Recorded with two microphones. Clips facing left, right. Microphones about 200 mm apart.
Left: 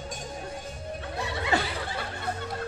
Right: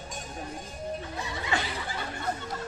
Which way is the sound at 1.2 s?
65° left (ahead or behind).